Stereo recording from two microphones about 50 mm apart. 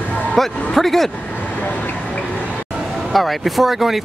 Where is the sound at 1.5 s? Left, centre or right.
Left.